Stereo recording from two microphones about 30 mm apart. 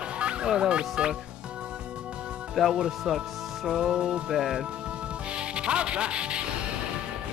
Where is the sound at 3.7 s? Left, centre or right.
Right.